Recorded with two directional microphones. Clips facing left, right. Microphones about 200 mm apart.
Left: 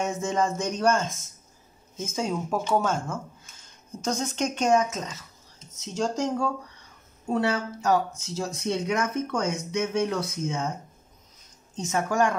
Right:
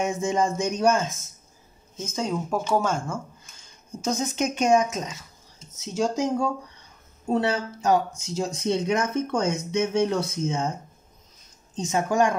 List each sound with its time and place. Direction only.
0.0 s speech: 15° right (ahead or behind)
7.2 s speech: 25° right (ahead or behind)
11.7 s speech: 20° right (ahead or behind)